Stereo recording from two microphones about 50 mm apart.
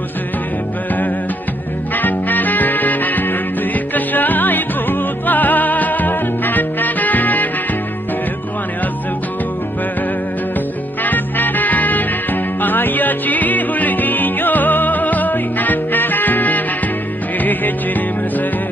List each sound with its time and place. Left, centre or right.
2.0 s music: left
11.1 s music: left